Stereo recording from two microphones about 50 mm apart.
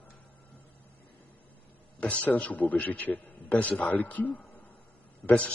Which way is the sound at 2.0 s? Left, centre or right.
Left.